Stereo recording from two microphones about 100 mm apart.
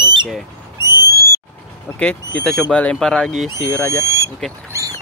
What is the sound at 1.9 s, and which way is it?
Speech, 10° left (ahead or behind).